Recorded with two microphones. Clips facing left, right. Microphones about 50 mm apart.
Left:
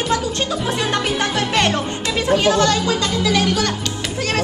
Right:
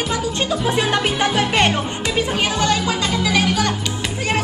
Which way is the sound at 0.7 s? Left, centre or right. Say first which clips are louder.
Right 3 dB; centre.